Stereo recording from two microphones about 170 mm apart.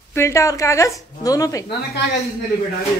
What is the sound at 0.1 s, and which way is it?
A woman's voice, 15° left (ahead or behind).